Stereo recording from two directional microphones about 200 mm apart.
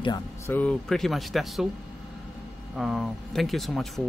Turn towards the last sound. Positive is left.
turn(degrees=0)  # may be behind; listen again after turning